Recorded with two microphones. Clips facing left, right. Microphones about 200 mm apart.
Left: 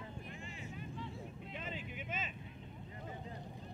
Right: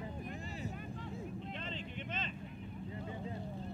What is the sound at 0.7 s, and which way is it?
Vehicle, 50° right (ahead or behind).